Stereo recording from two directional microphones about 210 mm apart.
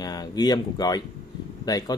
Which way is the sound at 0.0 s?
20° left (ahead or behind).